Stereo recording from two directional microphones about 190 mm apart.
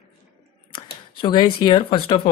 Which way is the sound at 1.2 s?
25° left (ahead or behind).